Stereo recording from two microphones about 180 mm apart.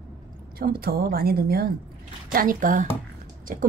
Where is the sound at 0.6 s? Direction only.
55° right (ahead or behind).